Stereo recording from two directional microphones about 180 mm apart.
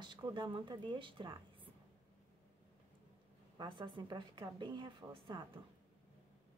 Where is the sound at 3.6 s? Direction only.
25° right (ahead or behind).